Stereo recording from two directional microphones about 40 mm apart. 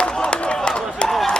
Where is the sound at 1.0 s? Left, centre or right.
Left.